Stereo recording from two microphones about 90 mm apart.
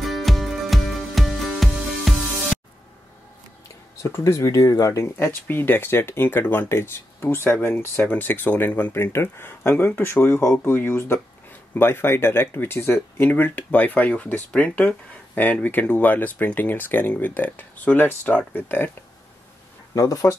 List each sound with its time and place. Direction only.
0.0 s music: centre (ahead or behind)
3.9 s speech: 30° left (ahead or behind)
7.5 s speech: 15° left (ahead or behind)
7.8 s speech: 25° left (ahead or behind)
19.9 s speech: 40° left (ahead or behind)